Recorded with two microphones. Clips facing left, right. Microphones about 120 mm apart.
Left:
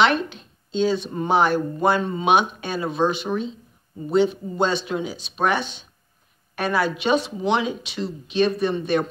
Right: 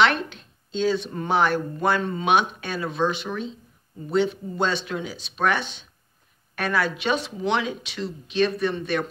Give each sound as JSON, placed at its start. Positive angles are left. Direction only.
{"t": 0.0, "sound": "speech", "side_deg": 10}